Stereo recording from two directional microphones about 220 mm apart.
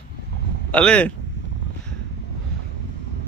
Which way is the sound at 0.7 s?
5° left (ahead or behind).